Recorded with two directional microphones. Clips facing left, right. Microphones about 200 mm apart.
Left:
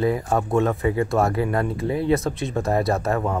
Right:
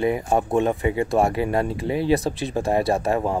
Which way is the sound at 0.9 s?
30° right (ahead or behind).